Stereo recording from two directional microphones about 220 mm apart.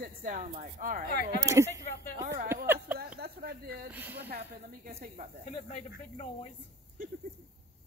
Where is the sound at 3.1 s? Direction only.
45° right (ahead or behind).